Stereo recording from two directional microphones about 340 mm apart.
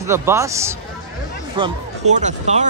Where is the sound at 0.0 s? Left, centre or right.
Centre.